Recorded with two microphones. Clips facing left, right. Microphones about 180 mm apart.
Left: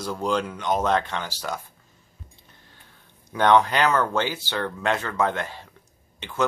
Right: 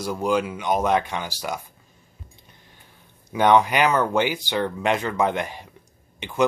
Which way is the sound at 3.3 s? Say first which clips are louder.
Right 1 dB; 10° right (ahead or behind).